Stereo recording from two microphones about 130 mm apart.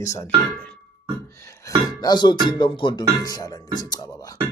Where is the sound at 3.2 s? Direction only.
30° left (ahead or behind).